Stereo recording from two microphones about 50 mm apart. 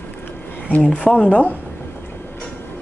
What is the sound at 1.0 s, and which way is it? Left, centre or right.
Speech, left.